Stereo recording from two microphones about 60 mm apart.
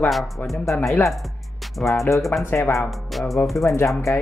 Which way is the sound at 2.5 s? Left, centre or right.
Left.